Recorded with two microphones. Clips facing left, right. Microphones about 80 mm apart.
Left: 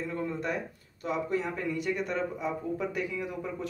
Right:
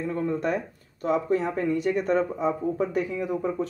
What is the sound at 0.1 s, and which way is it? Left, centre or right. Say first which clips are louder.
Speech: right 8 dB; right.